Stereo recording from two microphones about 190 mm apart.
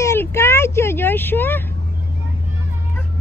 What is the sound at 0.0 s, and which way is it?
Vehicle, 15° left (ahead or behind).